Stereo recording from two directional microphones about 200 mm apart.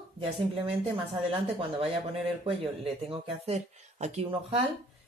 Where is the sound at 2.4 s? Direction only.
25° right (ahead or behind).